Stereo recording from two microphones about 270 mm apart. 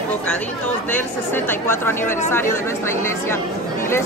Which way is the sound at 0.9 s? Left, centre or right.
Centre.